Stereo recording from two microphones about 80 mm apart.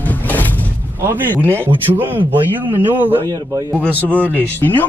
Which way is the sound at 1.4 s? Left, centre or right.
Left.